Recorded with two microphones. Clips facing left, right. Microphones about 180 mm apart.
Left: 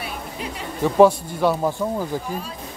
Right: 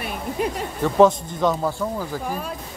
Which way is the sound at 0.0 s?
50° right (ahead or behind).